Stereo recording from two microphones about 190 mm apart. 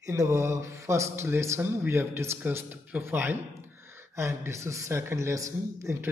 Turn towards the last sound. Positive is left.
turn(degrees=-15)  # may be behind; listen again after turning